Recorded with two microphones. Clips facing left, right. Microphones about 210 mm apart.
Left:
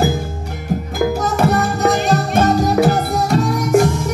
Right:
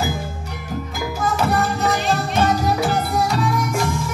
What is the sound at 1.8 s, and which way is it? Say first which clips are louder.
Music: left 5 dB; 45° left (ahead or behind).